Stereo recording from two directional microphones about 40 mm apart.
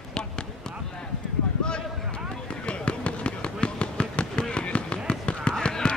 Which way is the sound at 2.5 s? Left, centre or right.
Left.